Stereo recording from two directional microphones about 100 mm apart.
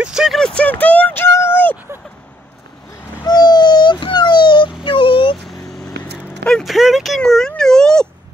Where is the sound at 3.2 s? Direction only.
45° left (ahead or behind).